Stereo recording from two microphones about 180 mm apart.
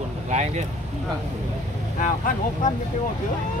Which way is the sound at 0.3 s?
40° right (ahead or behind).